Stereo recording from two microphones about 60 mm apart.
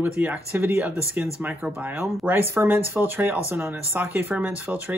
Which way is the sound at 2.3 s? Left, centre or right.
Right.